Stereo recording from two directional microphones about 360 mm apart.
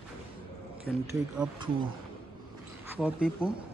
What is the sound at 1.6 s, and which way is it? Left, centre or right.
Speech, right.